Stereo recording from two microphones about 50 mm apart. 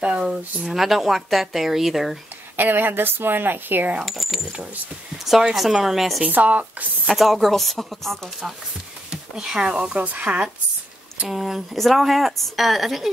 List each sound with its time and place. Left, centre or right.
0.7 s speech: centre
2.5 s a woman's voice: right
4.0 s speech: centre
5.5 s speech: centre
6.2 s speech: right
7.1 s speech: centre
9.1 s speech: centre
9.9 s speech: right
11.2 s speech: centre